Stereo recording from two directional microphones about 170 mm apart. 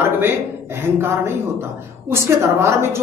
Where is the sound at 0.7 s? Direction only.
15° right (ahead or behind).